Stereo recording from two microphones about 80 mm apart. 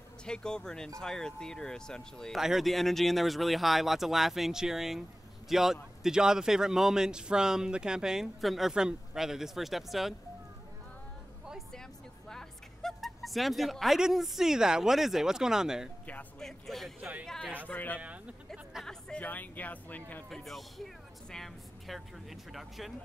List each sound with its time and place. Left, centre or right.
0.2 s speech: centre
2.3 s a man's voice: centre
12.3 s a woman's voice: centre
16.3 s a man's voice: centre
17.0 s speech: right
17.6 s speech: centre
17.9 s a sound: centre
19.1 s speech: left
20.2 s speech: centre